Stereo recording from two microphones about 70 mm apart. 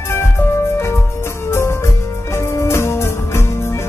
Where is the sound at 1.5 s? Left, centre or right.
Left.